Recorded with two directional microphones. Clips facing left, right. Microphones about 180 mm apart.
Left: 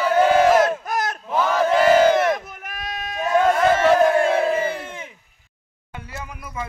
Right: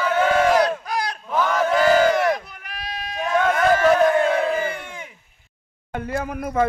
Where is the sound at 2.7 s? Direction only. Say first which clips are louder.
Left 1 dB; 45° left (ahead or behind).